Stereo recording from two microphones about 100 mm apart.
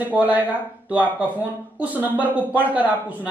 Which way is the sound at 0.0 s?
15° right (ahead or behind).